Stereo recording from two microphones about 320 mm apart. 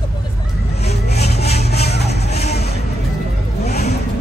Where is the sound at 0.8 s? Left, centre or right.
Centre.